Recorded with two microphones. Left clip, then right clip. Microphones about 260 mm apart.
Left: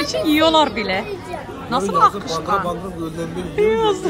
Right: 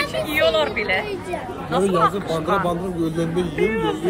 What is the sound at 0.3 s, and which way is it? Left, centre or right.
Speech, centre.